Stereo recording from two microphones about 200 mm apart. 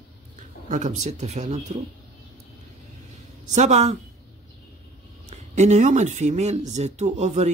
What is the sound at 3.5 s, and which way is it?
Speech, 35° right (ahead or behind).